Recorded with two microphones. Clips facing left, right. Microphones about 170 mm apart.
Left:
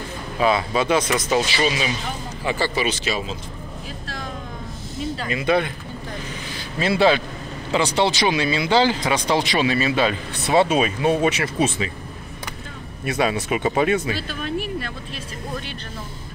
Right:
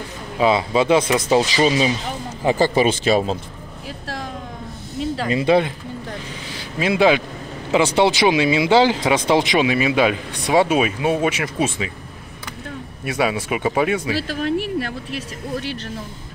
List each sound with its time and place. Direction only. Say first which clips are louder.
0.4 s speech: right 3 dB; 20° right (ahead or behind)
2.4 s speech: right 6 dB; 45° right (ahead or behind)
5.3 s speech: right 4 dB; 25° right (ahead or behind)
6.8 s speech: right 2 dB; 10° right (ahead or behind)
13.0 s speech: right 1 dB; 10° right (ahead or behind)
14.1 s speech: right 5 dB; 90° right